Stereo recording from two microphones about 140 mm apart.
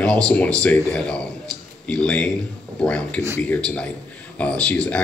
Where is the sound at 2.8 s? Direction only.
10° left (ahead or behind).